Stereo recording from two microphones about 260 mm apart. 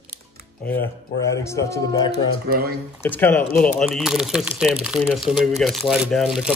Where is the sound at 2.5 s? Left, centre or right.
Right.